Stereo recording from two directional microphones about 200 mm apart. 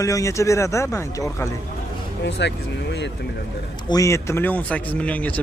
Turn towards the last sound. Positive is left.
turn(degrees=5)  # may be behind; listen again after turning